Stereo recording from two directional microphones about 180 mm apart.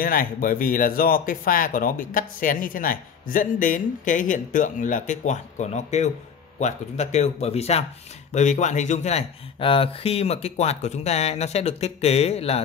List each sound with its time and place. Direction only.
0.0 s speech: 50° left (ahead or behind); by 12.5 s 35° left (ahead or behind)